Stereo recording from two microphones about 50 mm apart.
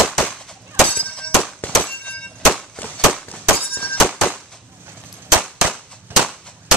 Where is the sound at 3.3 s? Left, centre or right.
Left.